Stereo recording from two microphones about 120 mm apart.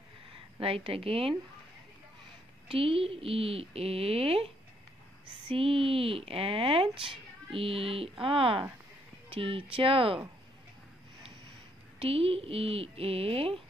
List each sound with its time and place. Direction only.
0.6 s a woman's voice: 50° right (ahead or behind)
2.7 s a woman's voice: 50° right (ahead or behind)
5.5 s a woman's voice: 50° right (ahead or behind)
12.0 s a woman's voice: 55° right (ahead or behind)